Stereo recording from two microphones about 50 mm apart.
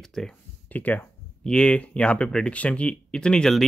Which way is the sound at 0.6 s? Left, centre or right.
Left.